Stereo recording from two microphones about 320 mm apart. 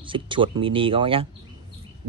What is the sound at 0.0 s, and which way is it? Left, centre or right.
Speech, centre.